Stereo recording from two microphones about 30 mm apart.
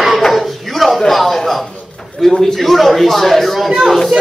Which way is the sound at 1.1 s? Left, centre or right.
Centre.